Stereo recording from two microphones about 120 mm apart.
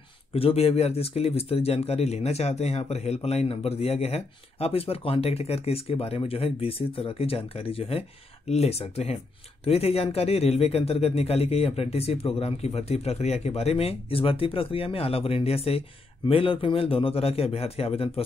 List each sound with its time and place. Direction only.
0.3 s a man's voice: 55° left (ahead or behind)